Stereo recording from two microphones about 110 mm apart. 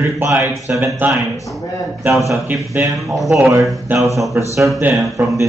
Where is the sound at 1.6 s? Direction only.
30° left (ahead or behind).